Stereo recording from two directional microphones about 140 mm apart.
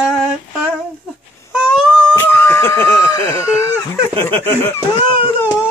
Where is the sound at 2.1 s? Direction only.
20° left (ahead or behind).